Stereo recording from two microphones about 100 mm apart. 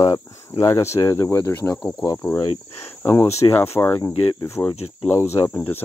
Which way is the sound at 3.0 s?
25° left (ahead or behind).